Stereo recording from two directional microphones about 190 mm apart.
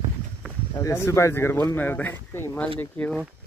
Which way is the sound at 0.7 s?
15° left (ahead or behind).